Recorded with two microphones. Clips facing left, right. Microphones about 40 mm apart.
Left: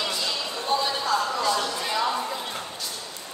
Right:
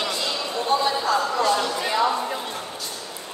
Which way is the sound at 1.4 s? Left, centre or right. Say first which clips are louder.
Right 3 dB; right.